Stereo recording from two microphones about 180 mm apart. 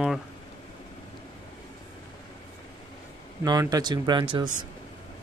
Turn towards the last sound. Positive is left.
turn(degrees=-25)  # may be behind; listen again after turning